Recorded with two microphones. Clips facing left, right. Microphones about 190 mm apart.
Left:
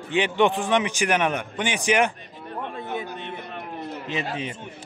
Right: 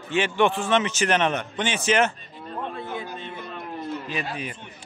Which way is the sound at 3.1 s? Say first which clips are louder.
Left 1 dB; 60° left (ahead or behind).